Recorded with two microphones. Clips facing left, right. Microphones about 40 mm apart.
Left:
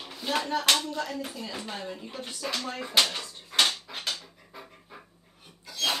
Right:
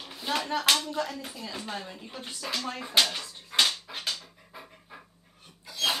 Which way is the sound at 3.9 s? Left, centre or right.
Centre.